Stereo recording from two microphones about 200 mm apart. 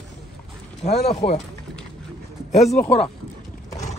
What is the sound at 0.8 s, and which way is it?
Speech, 35° left (ahead or behind).